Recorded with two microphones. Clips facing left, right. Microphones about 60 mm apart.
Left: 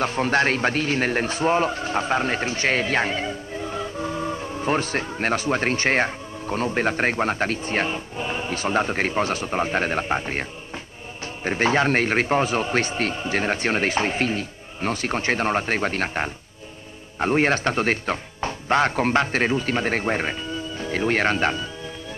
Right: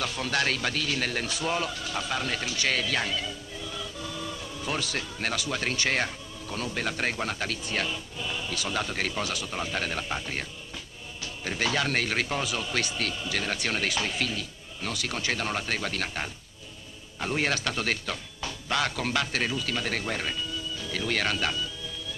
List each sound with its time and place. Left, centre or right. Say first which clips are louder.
0.0 s a man's voice: left 8 dB; left
11.4 s a man's voice: left 8 dB; left